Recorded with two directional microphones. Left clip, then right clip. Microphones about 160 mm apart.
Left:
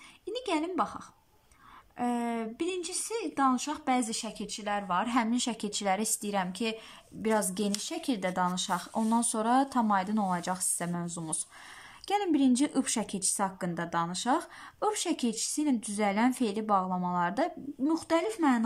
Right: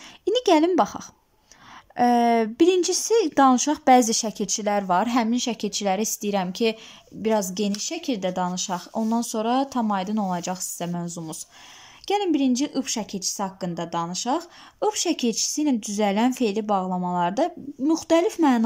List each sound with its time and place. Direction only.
0.2 s a woman's voice: 45° right (ahead or behind); by 18.6 s 20° right (ahead or behind)